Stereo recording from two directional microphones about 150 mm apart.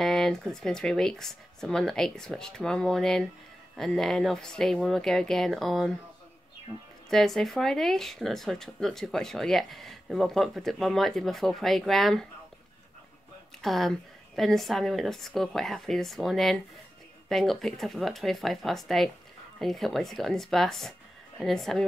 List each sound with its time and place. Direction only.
0.0 s speech: centre (ahead or behind)
7.1 s speech: centre (ahead or behind)
13.6 s speech: centre (ahead or behind)